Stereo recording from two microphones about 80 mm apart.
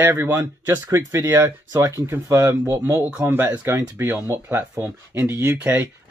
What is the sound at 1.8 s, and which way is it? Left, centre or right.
Speech, right.